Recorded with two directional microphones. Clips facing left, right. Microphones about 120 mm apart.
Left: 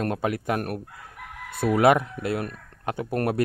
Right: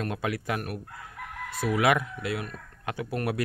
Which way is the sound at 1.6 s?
30° left (ahead or behind).